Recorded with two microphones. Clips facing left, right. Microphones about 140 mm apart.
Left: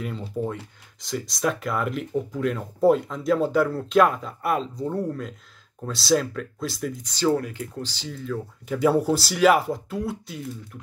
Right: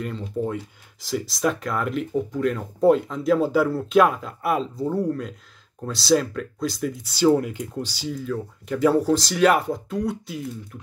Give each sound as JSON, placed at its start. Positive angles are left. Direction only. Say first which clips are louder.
{"t": 0.0, "sound": "speech", "louder": "right 2 dB", "side_deg": 5}
{"t": 7.2, "sound": "speech", "louder": "right 4 dB", "side_deg": -20}
{"t": 8.1, "sound": "speech", "louder": "right 2 dB", "side_deg": 0}